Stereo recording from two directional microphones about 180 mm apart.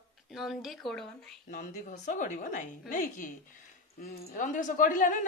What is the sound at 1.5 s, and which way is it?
Speech, 45° left (ahead or behind).